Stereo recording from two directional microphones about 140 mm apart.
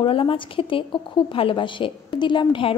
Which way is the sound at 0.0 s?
40° left (ahead or behind).